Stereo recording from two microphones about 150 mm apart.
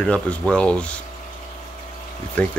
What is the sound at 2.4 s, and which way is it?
Speech, 10° left (ahead or behind).